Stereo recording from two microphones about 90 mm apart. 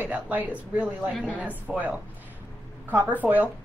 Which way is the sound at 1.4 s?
15° right (ahead or behind).